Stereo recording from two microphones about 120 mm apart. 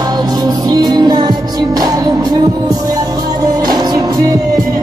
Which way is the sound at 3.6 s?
35° right (ahead or behind).